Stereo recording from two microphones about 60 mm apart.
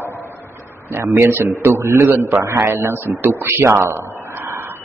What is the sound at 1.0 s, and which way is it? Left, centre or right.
A man's voice, right.